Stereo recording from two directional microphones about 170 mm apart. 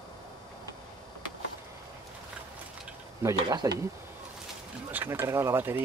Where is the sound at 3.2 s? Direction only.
20° right (ahead or behind).